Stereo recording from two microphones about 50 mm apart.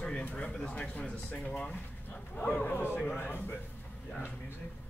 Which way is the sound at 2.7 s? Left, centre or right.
Left.